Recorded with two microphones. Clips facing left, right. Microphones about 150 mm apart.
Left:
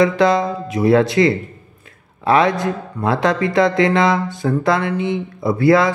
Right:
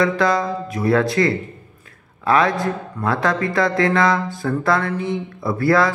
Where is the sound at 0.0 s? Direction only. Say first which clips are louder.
Left 4 dB; 20° left (ahead or behind).